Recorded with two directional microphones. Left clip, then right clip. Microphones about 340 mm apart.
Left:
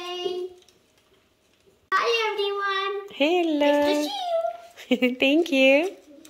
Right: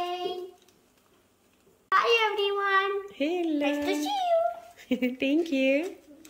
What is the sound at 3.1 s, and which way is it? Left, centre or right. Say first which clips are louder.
Speech: left 6 dB; centre.